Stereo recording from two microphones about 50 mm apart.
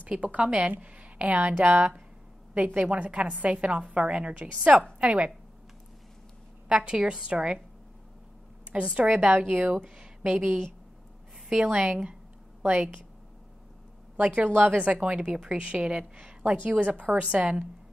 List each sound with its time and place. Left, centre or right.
0.1 s a woman's voice: right
6.7 s a woman's voice: centre
8.9 s speech: right
9.9 s a woman's voice: centre
14.1 s speech: right
16.6 s speech: right